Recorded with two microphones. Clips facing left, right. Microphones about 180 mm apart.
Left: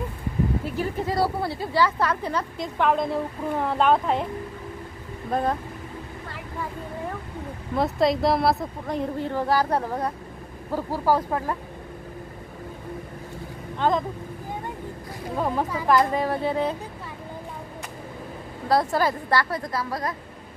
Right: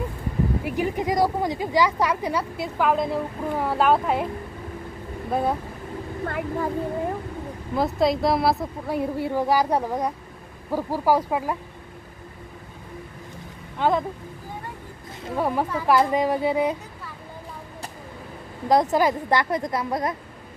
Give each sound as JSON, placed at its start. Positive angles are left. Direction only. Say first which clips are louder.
{"t": 0.7, "sound": "speech", "louder": "right 3 dB", "side_deg": -15}
{"t": 5.3, "sound": "speech", "louder": "right 1 dB", "side_deg": -10}
{"t": 6.2, "sound": "a sound", "louder": "right 10 dB", "side_deg": -55}
{"t": 7.7, "sound": "speech", "louder": "even", "side_deg": 0}
{"t": 13.7, "sound": "speech", "louder": "right 1 dB", "side_deg": -10}
{"t": 15.3, "sound": "speech", "louder": "right 2 dB", "side_deg": -10}
{"t": 18.7, "sound": "a woman's voice", "louder": "right 3 dB", "side_deg": -20}